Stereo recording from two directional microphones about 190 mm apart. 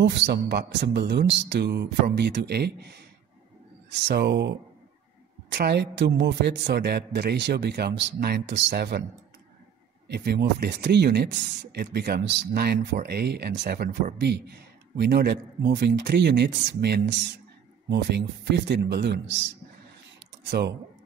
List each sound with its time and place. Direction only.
0.0 s speech: 65° right (ahead or behind)
10.0 s speech: 60° right (ahead or behind)
20.4 s speech: 60° right (ahead or behind)